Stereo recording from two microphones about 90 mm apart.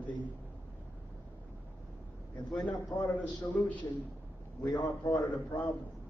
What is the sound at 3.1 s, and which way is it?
Speech, 15° left (ahead or behind).